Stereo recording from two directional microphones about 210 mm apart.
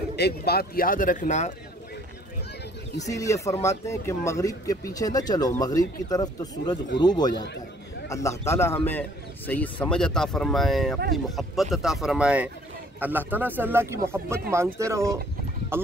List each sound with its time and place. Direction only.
0.1 s a man's voice: 50° left (ahead or behind)
3.1 s speech: 15° left (ahead or behind); by 15.9 s 10° right (ahead or behind)